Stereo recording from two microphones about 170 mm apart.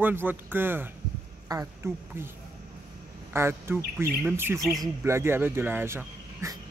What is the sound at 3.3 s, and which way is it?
Speech, 15° right (ahead or behind).